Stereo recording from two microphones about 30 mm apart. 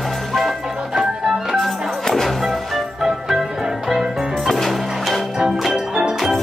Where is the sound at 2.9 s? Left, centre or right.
Centre.